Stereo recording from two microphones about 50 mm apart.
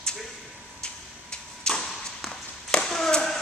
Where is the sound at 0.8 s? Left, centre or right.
Centre.